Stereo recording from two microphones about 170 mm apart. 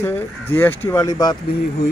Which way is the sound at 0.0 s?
10° left (ahead or behind).